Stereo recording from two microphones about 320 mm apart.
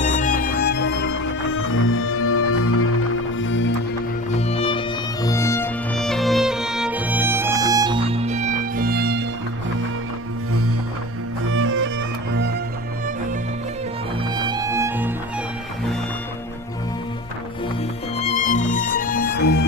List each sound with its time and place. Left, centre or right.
0.0 s music: left
4.4 s music: centre; by 9.2 s right
11.5 s music: right
14.3 s music: centre
18.1 s music: left